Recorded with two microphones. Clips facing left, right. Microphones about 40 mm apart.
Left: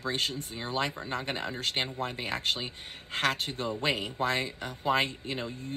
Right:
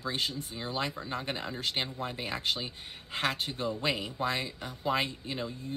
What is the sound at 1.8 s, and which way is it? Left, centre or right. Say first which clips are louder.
Speech: left 3 dB; centre.